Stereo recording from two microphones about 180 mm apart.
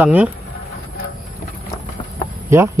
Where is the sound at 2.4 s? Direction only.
15° right (ahead or behind).